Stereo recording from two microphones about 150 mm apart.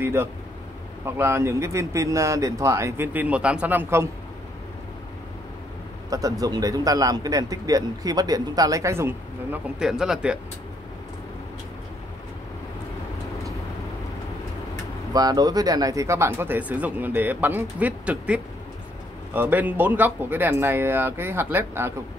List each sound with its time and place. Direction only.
0.0 s speech: 15° right (ahead or behind)
6.0 s speech: 25° right (ahead or behind)
9.8 s speech: 5° right (ahead or behind)
15.1 s speech: 25° right (ahead or behind)